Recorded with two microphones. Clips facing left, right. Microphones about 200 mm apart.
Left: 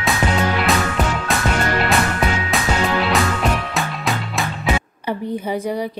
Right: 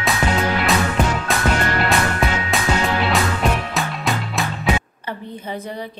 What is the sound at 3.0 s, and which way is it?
Music, centre (ahead or behind).